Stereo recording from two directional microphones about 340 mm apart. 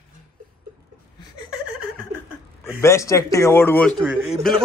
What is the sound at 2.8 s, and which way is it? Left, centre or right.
A man's voice, centre.